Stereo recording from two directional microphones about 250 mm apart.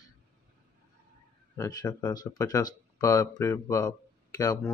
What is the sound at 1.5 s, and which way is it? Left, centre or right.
Speech, centre.